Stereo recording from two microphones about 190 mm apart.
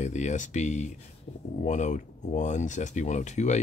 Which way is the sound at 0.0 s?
40° left (ahead or behind).